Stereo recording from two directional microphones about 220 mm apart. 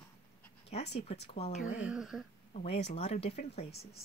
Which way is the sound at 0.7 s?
30° left (ahead or behind).